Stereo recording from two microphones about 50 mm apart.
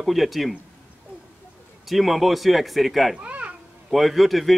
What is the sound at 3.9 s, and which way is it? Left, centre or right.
Speech, centre.